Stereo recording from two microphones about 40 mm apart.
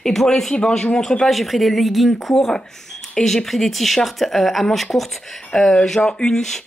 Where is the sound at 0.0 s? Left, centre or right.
Centre.